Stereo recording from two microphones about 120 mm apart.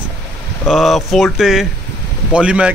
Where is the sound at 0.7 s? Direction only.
Centre (ahead or behind).